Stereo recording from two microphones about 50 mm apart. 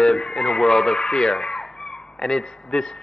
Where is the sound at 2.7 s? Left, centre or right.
Centre.